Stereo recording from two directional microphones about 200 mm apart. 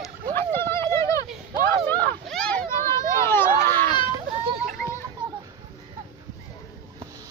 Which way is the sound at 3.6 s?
10° left (ahead or behind).